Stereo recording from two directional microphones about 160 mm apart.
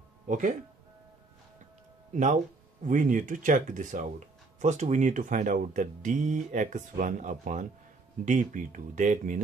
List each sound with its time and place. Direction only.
0.3 s speech: 55° right (ahead or behind)
2.1 s speech: 50° right (ahead or behind)